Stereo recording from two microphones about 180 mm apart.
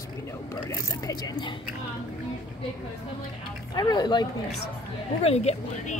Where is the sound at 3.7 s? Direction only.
25° left (ahead or behind).